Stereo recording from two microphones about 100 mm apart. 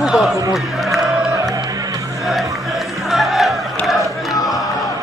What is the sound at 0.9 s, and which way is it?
Music, 35° right (ahead or behind).